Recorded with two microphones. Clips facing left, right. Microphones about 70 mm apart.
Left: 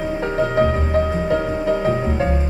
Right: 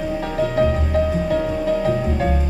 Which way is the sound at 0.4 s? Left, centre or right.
Left.